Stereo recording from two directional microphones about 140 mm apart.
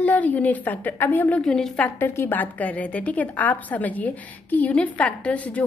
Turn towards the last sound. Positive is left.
turn(degrees=10)  # may be behind; listen again after turning